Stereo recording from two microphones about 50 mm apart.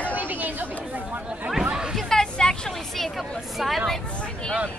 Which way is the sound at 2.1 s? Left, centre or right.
Centre.